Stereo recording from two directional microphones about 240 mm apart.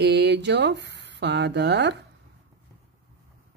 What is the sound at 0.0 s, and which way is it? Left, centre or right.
Speech, right.